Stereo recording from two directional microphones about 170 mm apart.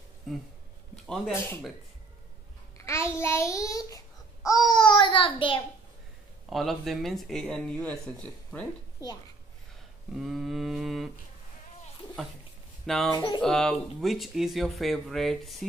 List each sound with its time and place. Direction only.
0.3 s speech: centre (ahead or behind)
2.8 s a child's voice: 15° left (ahead or behind)
6.5 s speech: centre (ahead or behind)
10.1 s speech: centre (ahead or behind)
12.8 s speech: centre (ahead or behind)
13.1 s a child's voice: 25° left (ahead or behind)
13.4 s speech: 5° left (ahead or behind)